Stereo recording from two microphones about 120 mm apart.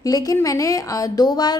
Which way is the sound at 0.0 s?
30° left (ahead or behind).